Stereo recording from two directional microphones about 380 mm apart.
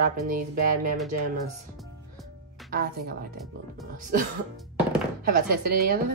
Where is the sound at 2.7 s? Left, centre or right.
Right.